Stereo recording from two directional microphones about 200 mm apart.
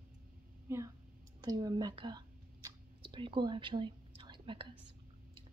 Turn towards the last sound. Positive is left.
turn(degrees=-25)  # may be behind; listen again after turning